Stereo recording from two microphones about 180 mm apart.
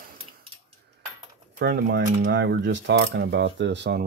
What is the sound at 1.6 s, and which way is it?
Mechanisms, 70° right (ahead or behind).